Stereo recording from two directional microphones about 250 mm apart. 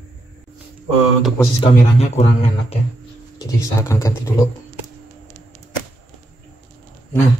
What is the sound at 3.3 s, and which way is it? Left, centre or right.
Speech, centre.